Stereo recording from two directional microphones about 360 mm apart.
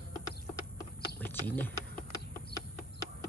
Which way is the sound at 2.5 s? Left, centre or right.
Left.